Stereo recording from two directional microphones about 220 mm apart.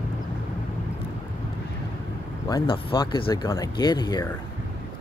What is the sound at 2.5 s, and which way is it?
Speech, 20° left (ahead or behind).